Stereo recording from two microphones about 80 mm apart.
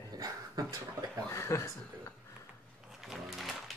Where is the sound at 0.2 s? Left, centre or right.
Right.